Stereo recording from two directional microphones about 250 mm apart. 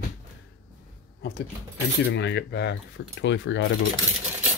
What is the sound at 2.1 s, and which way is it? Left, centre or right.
Cutlery, left.